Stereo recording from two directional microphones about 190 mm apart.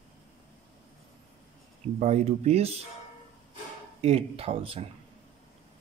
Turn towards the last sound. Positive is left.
turn(degrees=-30)  # may be behind; listen again after turning